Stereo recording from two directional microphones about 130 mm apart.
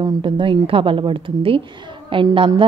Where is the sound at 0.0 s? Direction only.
40° right (ahead or behind).